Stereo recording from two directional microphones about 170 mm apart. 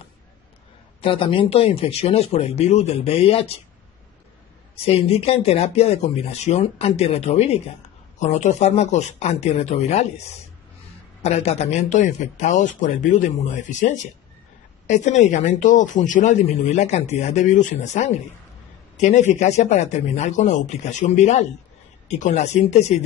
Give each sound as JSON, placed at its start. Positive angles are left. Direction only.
{"t": 1.0, "sound": "speech", "side_deg": 30}
{"t": 4.8, "sound": "speech", "side_deg": 35}
{"t": 11.2, "sound": "speech", "side_deg": 40}